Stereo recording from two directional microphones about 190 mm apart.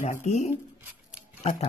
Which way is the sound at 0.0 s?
40° left (ahead or behind).